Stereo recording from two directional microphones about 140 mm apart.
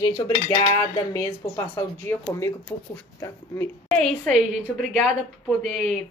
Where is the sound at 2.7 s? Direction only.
20° left (ahead or behind).